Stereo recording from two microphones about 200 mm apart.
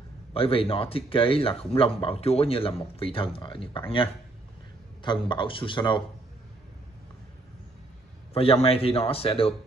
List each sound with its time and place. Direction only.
0.3 s speech: 30° left (ahead or behind)
5.0 s speech: 25° left (ahead or behind)
8.3 s speech: 30° left (ahead or behind)